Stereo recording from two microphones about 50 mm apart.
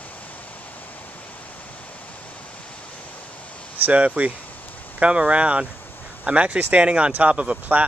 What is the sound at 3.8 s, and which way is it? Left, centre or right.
Speech, right.